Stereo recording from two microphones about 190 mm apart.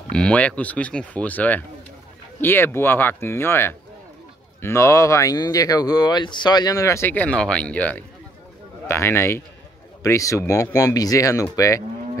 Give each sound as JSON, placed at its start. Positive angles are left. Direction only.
{"t": 0.1, "sound": "speech", "side_deg": 5}